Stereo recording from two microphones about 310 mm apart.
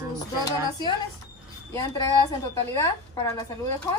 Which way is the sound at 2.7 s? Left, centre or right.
Centre.